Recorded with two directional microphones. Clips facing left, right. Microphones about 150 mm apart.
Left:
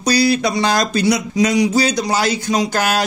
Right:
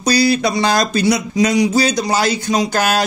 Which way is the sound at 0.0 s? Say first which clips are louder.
Right 1 dB; 35° right (ahead or behind).